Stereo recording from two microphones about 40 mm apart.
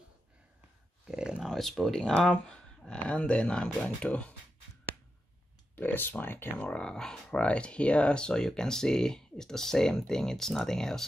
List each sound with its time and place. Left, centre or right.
1.1 s a sound: right
1.4 s speech: centre
3.0 s speech: left
5.8 s speech: left
6.2 s speech: left
6.7 s speech: left
7.3 s speech: left; by 11.1 s centre